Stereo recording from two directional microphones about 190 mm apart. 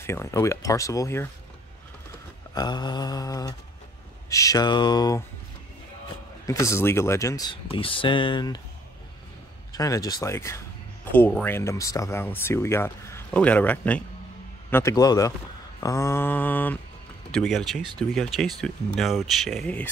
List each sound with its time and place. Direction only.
0.0 s speech: 15° left (ahead or behind)
2.5 s speech: 20° left (ahead or behind)
6.4 s speech: 15° left (ahead or behind)
9.7 s speech: 20° left (ahead or behind)